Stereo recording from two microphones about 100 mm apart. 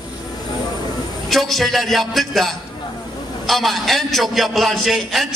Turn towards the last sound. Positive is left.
turn(degrees=0)  # may be behind; listen again after turning